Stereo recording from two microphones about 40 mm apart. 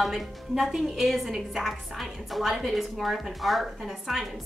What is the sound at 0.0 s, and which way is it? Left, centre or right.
A woman's voice, centre.